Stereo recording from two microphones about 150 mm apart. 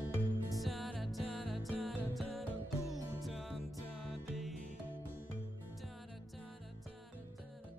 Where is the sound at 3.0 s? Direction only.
25° right (ahead or behind).